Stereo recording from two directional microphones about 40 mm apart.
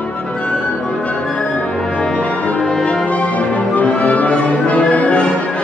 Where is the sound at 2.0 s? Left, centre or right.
Left.